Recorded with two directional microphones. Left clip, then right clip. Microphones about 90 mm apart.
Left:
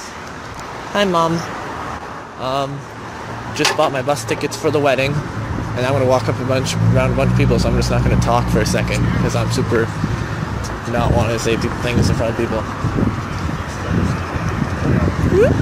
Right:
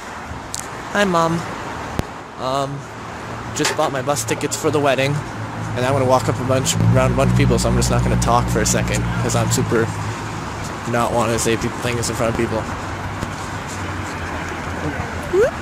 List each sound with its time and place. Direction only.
0.9 s speech: 20° right (ahead or behind)
2.4 s speech: 30° right (ahead or behind)
3.5 s speech: 15° right (ahead or behind)
4.3 s speech: 25° right (ahead or behind)
7.9 s speech: 20° right (ahead or behind)
11.0 s speech: 45° right (ahead or behind)